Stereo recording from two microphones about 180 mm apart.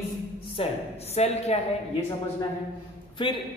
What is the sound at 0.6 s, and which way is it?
A woman's voice, 30° left (ahead or behind).